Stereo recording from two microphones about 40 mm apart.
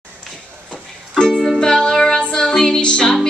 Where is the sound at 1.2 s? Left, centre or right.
Centre.